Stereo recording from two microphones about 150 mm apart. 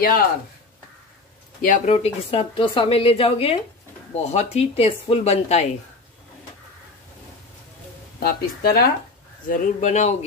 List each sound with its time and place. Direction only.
0.0 s speech: 75° left (ahead or behind)
1.9 s speech: 40° left (ahead or behind)
8.2 s speech: 90° left
9.5 s speech: 55° left (ahead or behind)